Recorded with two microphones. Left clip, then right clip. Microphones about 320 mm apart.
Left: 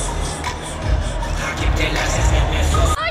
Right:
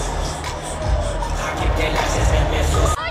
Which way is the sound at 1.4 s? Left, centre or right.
Right.